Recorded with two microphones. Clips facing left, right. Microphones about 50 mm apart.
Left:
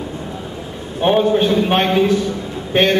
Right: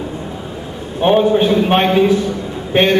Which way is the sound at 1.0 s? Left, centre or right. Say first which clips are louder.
Right 2 dB; centre.